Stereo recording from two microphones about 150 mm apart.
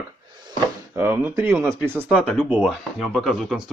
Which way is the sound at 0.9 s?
15° right (ahead or behind).